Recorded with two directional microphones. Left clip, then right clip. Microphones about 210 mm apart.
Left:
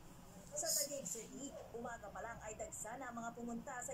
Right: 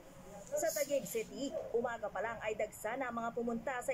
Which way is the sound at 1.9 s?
25° right (ahead or behind).